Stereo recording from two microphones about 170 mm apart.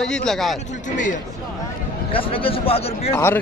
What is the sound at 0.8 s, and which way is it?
Speech, 45° left (ahead or behind).